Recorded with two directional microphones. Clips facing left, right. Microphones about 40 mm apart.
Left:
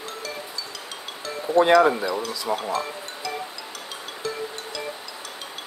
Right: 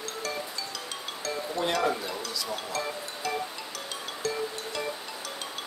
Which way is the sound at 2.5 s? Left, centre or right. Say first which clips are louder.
Left 12 dB; left.